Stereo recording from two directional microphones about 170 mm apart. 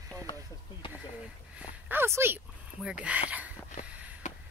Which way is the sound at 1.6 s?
10° right (ahead or behind).